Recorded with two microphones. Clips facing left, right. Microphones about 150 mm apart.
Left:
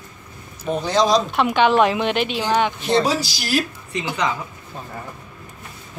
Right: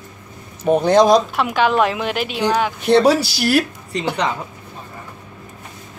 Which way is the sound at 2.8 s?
65° right (ahead or behind).